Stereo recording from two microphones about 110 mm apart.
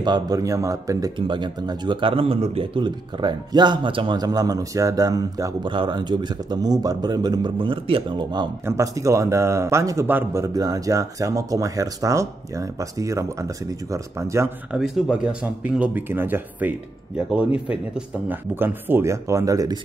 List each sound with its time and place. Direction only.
0.0 s a man's voice: 35° right (ahead or behind)
1.1 s a man's voice: 50° right (ahead or behind)
4.2 s a man's voice: 35° right (ahead or behind)
7.5 s a man's voice: 50° right (ahead or behind)
8.6 s a man's voice: 30° right (ahead or behind)
14.8 s a man's voice: 10° right (ahead or behind); by 19.8 s 30° right (ahead or behind)